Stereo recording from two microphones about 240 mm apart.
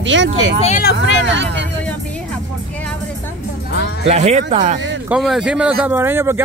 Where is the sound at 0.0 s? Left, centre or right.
Right.